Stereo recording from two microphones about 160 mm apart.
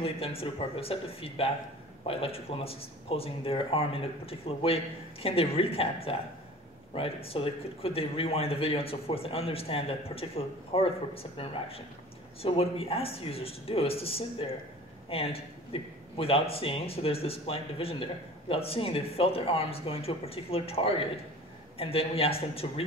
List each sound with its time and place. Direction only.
0.0 s speech: 35° left (ahead or behind)
12.4 s speech: 35° left (ahead or behind)